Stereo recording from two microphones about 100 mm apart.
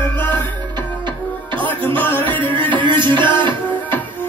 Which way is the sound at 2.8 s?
55° right (ahead or behind).